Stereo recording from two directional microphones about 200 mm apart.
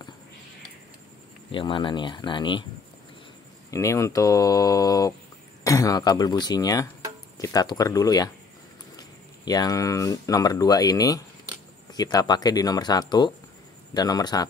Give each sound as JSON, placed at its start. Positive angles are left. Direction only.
{"t": 1.5, "sound": "speech", "side_deg": 25}
{"t": 3.7, "sound": "speech", "side_deg": 15}